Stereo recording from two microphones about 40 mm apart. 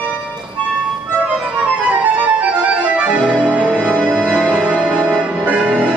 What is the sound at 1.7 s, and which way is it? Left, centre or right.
Music, right.